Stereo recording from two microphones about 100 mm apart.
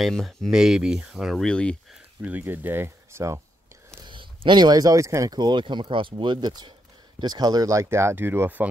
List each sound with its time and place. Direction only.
0.0 s speech: 5° left (ahead or behind)
2.2 s speech: 20° right (ahead or behind)
4.0 s speech: 55° right (ahead or behind); by 8.6 s 20° right (ahead or behind)